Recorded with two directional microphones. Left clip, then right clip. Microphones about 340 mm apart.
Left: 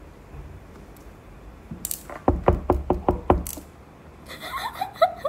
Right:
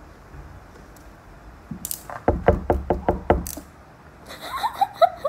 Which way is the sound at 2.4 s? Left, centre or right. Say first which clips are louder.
Right 2 dB; centre.